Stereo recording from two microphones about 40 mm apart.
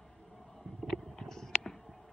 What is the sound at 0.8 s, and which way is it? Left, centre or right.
Clip-clop, centre.